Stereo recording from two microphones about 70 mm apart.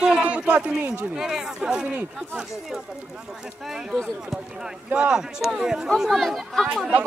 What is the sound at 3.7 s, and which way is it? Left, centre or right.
Speech, centre.